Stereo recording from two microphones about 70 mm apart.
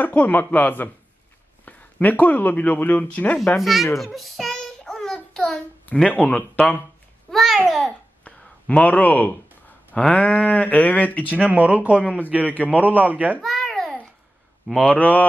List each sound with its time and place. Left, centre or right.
0.0 s speech: left
3.6 s a sound: centre
6.0 s speech: left
7.2 s babbling: centre
8.2 s speech: centre
11.3 s a man's voice: centre
13.4 s babbling: centre
14.8 s speech: centre